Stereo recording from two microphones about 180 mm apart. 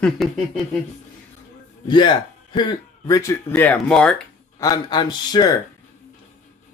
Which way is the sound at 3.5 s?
5° left (ahead or behind).